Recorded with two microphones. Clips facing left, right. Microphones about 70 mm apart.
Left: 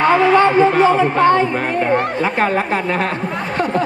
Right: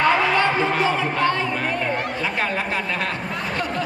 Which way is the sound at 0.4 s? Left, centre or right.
Left.